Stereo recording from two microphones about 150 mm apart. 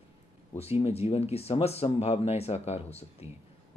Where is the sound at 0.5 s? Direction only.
45° left (ahead or behind).